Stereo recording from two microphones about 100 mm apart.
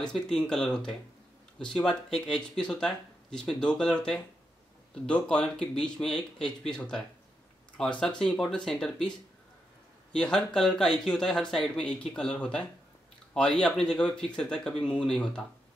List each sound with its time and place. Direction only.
0.0 s speech: 10° left (ahead or behind)
10.1 s speech: 5° left (ahead or behind)